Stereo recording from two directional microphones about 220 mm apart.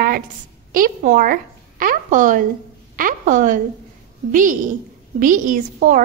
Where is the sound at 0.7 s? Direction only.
35° right (ahead or behind).